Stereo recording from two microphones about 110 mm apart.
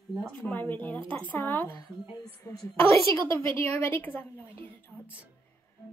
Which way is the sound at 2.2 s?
30° left (ahead or behind).